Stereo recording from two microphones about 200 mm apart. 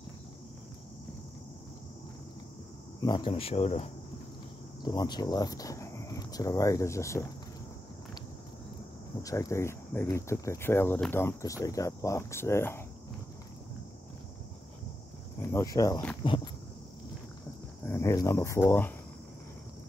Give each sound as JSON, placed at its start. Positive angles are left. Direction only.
{"t": 3.0, "sound": "speech", "side_deg": 20}
{"t": 4.8, "sound": "speech", "side_deg": 20}
{"t": 9.2, "sound": "speech", "side_deg": 15}
{"t": 15.4, "sound": "speech", "side_deg": 15}
{"t": 17.8, "sound": "speech", "side_deg": 15}